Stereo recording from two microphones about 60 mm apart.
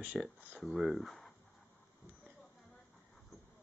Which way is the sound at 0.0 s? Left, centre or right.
Centre.